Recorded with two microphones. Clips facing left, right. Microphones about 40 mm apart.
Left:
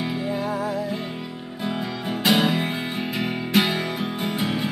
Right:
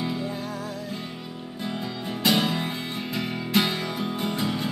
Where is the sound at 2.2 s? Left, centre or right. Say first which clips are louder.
Left 3 dB; centre.